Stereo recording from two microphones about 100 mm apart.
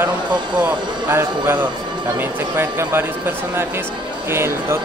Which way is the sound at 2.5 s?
25° right (ahead or behind).